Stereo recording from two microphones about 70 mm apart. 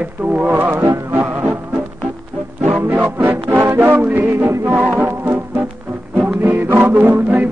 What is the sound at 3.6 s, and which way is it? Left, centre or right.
Music, right.